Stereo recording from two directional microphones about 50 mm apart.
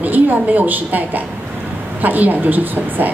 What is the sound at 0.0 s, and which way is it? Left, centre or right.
A woman's voice, right.